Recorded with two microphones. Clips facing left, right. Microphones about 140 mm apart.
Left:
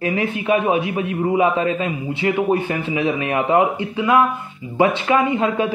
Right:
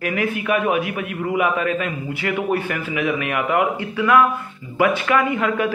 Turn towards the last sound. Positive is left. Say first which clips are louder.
# left 2 dB
turn(degrees=20)  # may be behind; listen again after turning